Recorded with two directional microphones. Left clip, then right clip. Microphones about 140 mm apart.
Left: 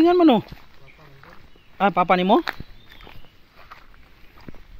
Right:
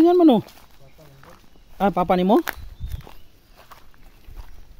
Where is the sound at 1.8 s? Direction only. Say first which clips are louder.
Left 1 dB; 40° right (ahead or behind).